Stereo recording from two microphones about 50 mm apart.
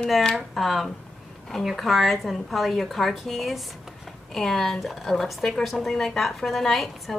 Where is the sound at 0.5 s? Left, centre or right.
Centre.